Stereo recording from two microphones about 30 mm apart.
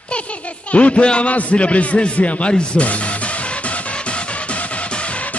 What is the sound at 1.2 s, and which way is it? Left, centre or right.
Speech, left.